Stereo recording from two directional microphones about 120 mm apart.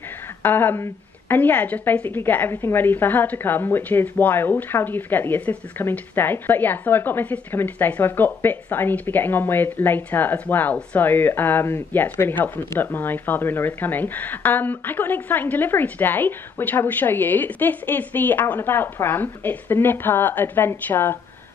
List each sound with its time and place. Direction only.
0.4 s a woman's voice: 15° left (ahead or behind)